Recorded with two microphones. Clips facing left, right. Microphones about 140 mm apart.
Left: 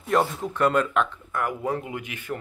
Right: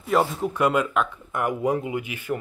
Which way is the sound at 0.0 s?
5° right (ahead or behind).